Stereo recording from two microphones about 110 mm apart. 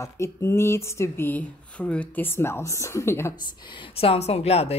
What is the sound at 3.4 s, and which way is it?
A woman's voice, 40° left (ahead or behind).